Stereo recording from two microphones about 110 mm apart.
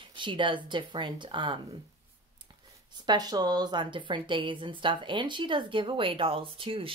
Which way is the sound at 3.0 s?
40° right (ahead or behind).